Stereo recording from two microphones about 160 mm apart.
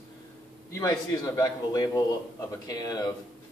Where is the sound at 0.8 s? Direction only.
25° left (ahead or behind).